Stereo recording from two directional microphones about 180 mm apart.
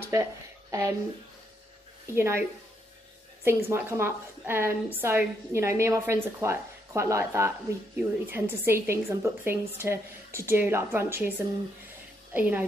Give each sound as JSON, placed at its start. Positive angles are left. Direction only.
{"t": 0.1, "sound": "speech", "side_deg": -15}
{"t": 2.1, "sound": "a woman's voice", "side_deg": -15}
{"t": 3.4, "sound": "a woman's voice", "side_deg": -15}